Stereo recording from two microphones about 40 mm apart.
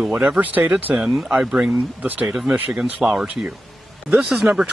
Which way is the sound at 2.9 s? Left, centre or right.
Right.